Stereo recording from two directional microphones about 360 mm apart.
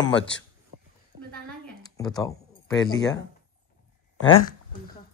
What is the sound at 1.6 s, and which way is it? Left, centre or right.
Music, centre.